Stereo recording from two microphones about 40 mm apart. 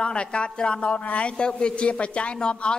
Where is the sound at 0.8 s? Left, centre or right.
Left.